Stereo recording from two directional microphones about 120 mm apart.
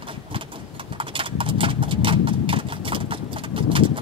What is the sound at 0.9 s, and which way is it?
Clip-clop, 45° right (ahead or behind).